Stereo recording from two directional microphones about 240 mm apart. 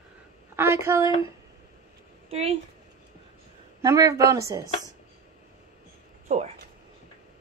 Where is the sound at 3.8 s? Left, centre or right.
Centre.